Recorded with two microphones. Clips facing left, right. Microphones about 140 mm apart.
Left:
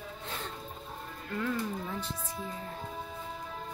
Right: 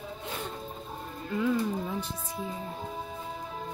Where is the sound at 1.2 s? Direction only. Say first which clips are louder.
Right 6 dB; 15° right (ahead or behind).